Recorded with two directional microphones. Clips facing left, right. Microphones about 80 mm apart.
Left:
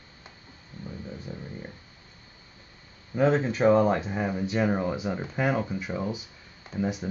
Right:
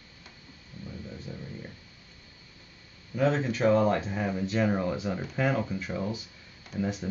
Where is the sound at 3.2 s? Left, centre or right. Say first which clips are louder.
Left 3 dB; left.